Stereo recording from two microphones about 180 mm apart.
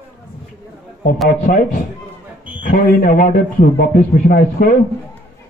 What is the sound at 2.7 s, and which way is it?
A man's voice, 55° left (ahead or behind).